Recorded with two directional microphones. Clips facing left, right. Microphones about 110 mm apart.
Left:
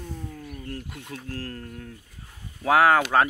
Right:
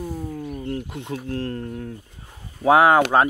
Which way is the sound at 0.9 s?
25° right (ahead or behind).